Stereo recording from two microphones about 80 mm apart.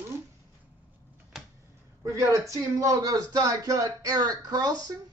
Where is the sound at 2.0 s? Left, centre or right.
Right.